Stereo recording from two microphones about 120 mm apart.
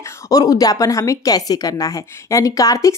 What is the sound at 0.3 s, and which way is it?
Speech, 30° left (ahead or behind).